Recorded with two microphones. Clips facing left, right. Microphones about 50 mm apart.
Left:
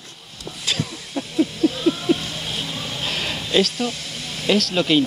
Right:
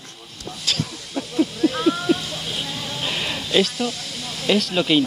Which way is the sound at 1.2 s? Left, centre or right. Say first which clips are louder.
Even; centre.